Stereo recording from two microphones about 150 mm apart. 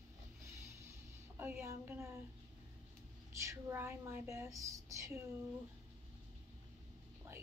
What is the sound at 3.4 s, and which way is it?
A woman's voice, 15° right (ahead or behind).